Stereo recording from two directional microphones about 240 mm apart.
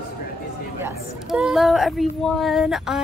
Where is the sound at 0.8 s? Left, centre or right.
Centre.